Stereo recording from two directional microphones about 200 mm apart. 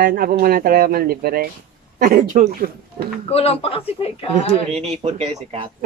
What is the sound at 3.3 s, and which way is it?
Speech, 30° left (ahead or behind).